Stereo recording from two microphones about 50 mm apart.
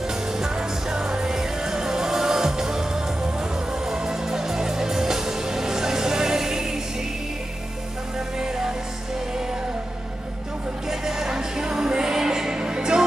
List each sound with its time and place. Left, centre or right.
0.3 s music: centre
8.4 s music: centre
10.9 s music: centre